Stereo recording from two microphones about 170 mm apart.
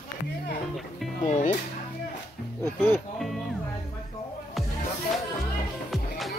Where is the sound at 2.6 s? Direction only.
15° left (ahead or behind).